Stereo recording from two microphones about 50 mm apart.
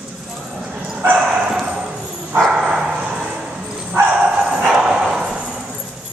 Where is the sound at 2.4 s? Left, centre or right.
Centre.